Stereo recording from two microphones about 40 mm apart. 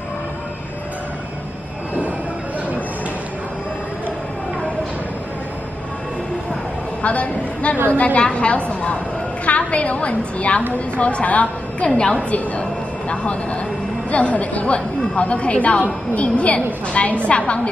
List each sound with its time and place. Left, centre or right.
7.0 s a man's voice: left
11.9 s a woman's voice: left